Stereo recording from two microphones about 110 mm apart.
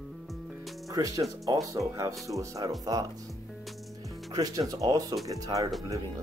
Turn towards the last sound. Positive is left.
turn(degrees=-35)  # may be behind; listen again after turning